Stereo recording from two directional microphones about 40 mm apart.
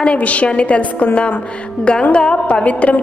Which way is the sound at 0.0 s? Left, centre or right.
Left.